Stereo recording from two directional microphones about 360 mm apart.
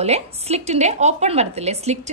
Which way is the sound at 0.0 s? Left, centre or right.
Centre.